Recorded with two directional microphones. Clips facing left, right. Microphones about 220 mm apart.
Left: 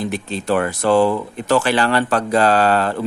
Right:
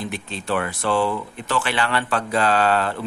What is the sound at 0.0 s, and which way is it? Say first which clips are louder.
A man's voice: left 6 dB; 40° left (ahead or behind).